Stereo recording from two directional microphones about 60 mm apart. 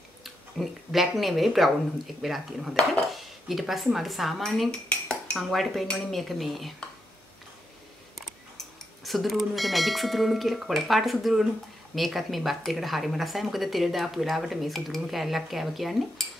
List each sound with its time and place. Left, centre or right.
0.2 s speech: centre
4.6 s dishes: centre
5.4 s speech: centre
8.5 s speech: centre